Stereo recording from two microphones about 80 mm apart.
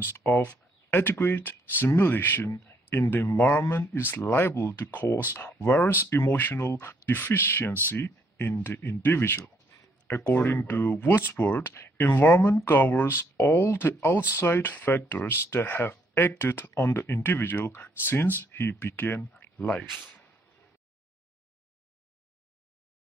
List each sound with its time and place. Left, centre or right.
0.0 s speech: left
0.4 s speech: centre